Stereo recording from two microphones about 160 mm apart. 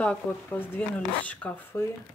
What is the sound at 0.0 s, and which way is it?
Speech, 10° left (ahead or behind).